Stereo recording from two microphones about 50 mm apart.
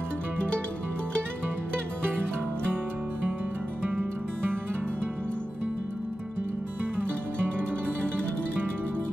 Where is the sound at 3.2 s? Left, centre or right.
Right.